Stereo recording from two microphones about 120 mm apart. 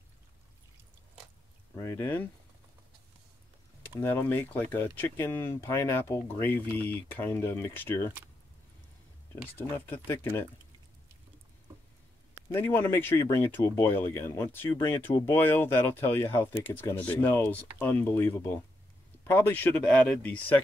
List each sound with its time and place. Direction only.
1.8 s speech: 20° left (ahead or behind)
4.0 s speech: 15° left (ahead or behind)
9.6 s speech: 15° left (ahead or behind)
12.5 s speech: 15° left (ahead or behind)